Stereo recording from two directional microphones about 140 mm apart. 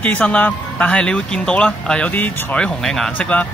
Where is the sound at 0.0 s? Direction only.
10° left (ahead or behind).